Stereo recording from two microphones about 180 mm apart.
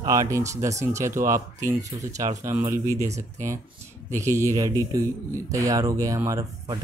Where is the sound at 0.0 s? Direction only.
20° right (ahead or behind).